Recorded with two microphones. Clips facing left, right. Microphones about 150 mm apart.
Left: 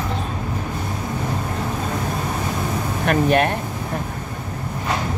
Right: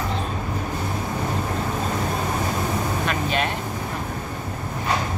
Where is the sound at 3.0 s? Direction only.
55° left (ahead or behind).